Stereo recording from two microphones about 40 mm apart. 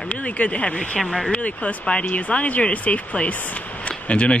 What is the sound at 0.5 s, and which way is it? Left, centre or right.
Speech, left.